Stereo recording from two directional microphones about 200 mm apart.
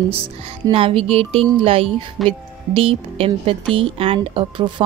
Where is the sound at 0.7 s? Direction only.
25° right (ahead or behind).